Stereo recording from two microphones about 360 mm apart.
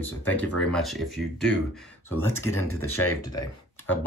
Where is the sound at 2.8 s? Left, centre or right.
Left.